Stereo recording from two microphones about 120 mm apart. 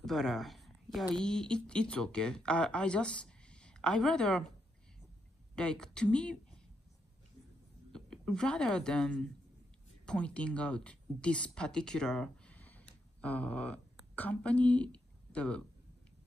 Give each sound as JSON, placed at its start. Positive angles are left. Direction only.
{"t": 0.0, "sound": "a sound", "side_deg": 0}
{"t": 1.1, "sound": "speech", "side_deg": 5}
{"t": 5.6, "sound": "speech", "side_deg": 5}
{"t": 7.9, "sound": "a woman's voice", "side_deg": 5}